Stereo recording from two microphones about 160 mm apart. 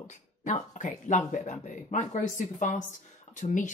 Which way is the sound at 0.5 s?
50° left (ahead or behind).